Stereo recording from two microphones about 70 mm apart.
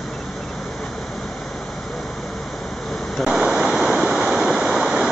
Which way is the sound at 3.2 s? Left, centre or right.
Centre.